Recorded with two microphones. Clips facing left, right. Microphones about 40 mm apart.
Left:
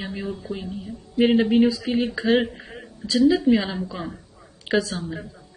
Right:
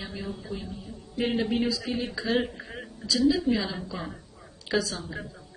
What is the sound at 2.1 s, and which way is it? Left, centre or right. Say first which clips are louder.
Speech: left 5 dB; left.